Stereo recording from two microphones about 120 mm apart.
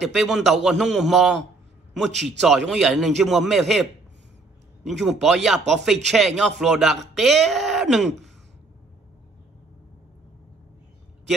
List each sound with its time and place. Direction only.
0.0 s speech: centre (ahead or behind)
4.8 s speech: centre (ahead or behind)